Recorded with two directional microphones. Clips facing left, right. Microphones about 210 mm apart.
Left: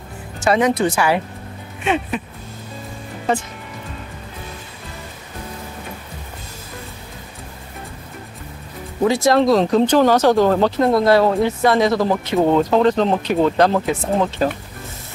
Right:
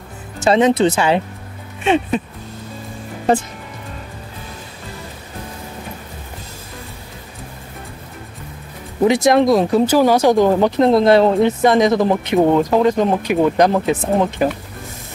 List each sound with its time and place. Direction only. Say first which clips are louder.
0.4 s speech: right 3 dB; 25° right (ahead or behind)
9.0 s speech: right 2 dB; 20° right (ahead or behind)